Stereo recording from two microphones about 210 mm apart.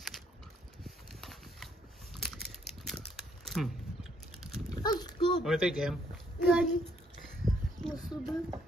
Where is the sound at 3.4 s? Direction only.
Centre (ahead or behind).